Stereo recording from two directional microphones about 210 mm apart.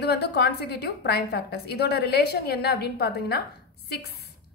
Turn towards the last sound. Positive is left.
turn(degrees=50)  # may be behind; listen again after turning